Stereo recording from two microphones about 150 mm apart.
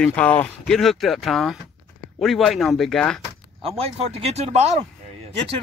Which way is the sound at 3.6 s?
40° right (ahead or behind).